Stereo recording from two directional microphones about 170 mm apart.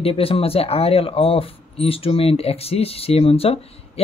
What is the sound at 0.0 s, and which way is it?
Speech, 35° left (ahead or behind).